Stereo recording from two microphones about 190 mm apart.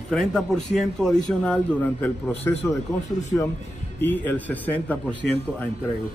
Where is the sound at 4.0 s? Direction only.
10° left (ahead or behind).